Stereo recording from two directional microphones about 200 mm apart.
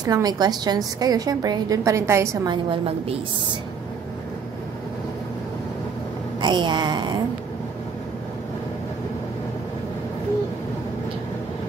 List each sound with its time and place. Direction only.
0.0 s a woman's voice: 20° right (ahead or behind)
6.4 s a woman's voice: 20° right (ahead or behind)